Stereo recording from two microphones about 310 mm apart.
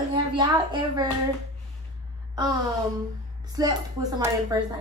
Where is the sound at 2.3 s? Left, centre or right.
Centre.